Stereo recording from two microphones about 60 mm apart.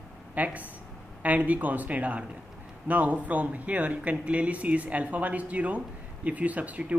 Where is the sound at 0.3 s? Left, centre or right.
Right.